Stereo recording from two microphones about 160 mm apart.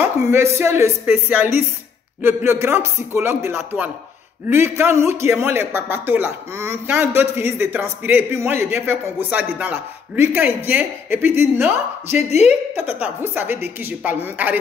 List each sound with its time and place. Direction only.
0.0 s a man's voice: 15° right (ahead or behind)
12.2 s a woman's voice: 40° left (ahead or behind)
12.4 s a man's voice: 10° right (ahead or behind)